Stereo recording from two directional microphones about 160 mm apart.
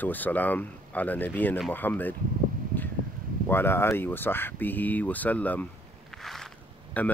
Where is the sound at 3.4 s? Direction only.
15° left (ahead or behind).